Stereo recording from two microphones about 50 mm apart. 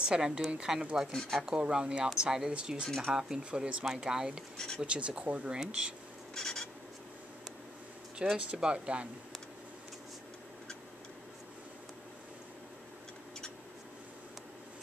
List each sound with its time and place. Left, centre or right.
0.0 s a woman's voice: centre
3.8 s speech: centre; by 5.5 s right
5.5 s speech: centre
6.3 s a sound: centre
8.2 s speech: centre